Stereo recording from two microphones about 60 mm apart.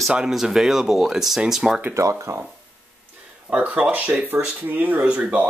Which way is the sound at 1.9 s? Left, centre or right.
Right.